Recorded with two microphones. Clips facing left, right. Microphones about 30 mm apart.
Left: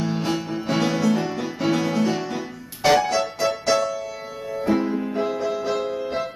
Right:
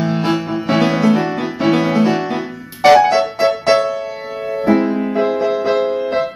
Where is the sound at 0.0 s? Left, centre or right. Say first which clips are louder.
Right 7 dB; right.